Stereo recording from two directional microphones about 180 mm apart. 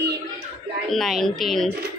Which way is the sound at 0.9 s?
Centre (ahead or behind).